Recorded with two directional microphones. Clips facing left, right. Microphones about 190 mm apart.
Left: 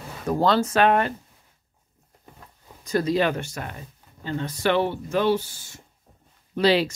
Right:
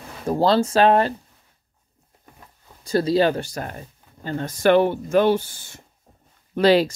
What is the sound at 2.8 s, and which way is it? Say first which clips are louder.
Speech: right 4 dB; 30° right (ahead or behind).